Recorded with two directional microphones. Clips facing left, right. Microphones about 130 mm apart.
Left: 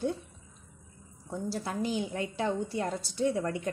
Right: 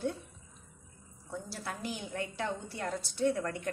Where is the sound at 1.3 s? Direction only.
20° left (ahead or behind).